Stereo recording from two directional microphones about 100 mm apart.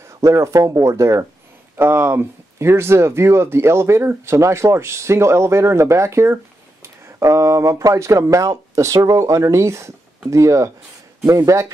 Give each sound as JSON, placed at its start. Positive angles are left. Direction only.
{"t": 0.2, "sound": "speech", "side_deg": -30}